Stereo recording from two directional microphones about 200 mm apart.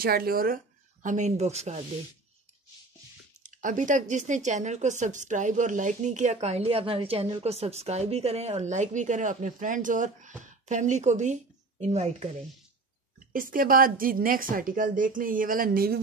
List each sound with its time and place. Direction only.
0.0 s a woman's voice: 50° right (ahead or behind); by 1.9 s 35° right (ahead or behind)
3.4 s a woman's voice: 40° right (ahead or behind)
13.3 s a woman's voice: 45° right (ahead or behind)